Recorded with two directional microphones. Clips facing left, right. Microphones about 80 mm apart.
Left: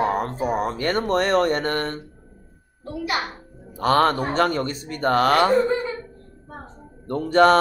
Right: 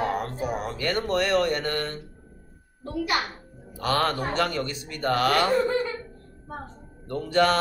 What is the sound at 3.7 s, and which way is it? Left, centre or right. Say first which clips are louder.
A man's voice: left 6 dB; left.